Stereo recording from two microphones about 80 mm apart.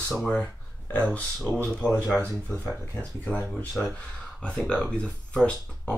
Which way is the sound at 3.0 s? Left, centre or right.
Centre.